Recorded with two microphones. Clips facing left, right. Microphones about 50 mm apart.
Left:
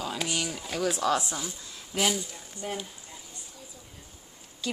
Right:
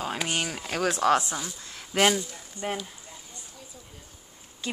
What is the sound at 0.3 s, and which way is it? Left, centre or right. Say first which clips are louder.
Speech: right 2 dB; right.